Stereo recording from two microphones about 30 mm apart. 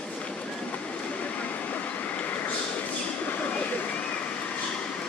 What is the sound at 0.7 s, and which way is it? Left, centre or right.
Train, left.